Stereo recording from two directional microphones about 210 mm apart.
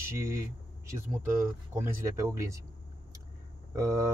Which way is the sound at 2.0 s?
15° right (ahead or behind).